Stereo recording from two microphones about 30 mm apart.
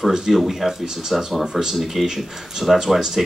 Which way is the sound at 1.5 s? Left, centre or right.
Centre.